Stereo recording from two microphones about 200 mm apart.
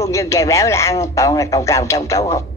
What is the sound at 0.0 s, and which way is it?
A woman's voice, 15° left (ahead or behind).